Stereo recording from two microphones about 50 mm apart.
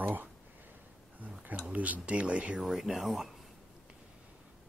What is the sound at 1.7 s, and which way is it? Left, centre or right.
Speech, right.